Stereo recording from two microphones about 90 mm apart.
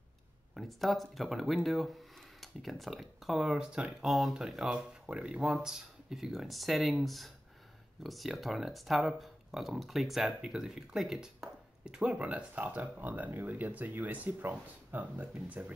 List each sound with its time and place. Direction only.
0.6 s speech: centre (ahead or behind); by 15.7 s 15° right (ahead or behind)